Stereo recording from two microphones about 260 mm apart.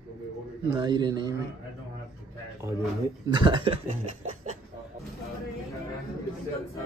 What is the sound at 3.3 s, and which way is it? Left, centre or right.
Speech, centre.